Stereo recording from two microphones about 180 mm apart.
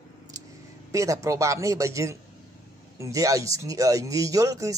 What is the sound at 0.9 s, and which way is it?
Speech, 15° right (ahead or behind).